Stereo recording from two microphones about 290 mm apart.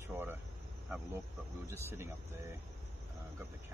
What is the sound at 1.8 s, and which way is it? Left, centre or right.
Speech, centre.